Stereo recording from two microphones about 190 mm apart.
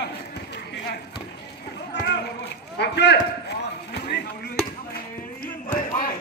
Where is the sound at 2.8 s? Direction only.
60° left (ahead or behind).